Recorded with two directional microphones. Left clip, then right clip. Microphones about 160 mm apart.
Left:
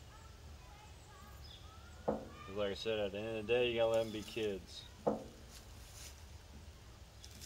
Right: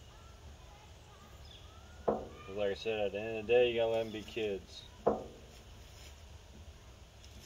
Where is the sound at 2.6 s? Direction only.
20° left (ahead or behind).